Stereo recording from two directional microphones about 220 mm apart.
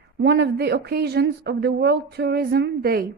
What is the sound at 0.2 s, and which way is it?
Speech, 50° right (ahead or behind).